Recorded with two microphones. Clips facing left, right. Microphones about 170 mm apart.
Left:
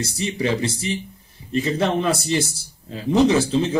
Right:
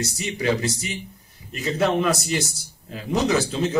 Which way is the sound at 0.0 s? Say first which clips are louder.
Left 1 dB; 30° left (ahead or behind).